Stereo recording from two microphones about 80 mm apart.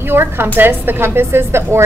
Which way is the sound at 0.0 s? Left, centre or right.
Right.